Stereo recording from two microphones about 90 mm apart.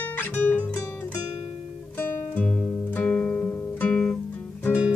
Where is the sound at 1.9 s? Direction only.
20° left (ahead or behind).